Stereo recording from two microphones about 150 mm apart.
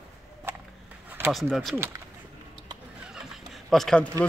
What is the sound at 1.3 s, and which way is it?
Speech, centre (ahead or behind).